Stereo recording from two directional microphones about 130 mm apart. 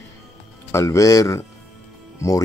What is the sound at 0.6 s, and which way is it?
Speech, 25° left (ahead or behind).